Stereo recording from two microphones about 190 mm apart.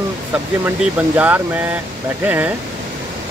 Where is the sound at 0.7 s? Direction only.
10° right (ahead or behind).